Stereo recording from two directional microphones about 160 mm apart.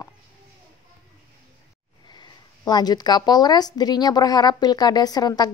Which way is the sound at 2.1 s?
25° left (ahead or behind).